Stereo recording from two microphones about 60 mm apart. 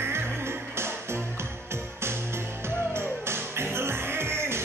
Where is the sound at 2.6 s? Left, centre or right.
Right.